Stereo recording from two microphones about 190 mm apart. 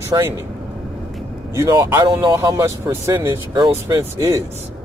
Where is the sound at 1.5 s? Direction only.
15° right (ahead or behind).